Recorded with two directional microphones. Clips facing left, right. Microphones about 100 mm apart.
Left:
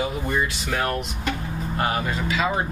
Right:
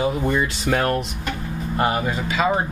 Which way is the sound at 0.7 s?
45° right (ahead or behind).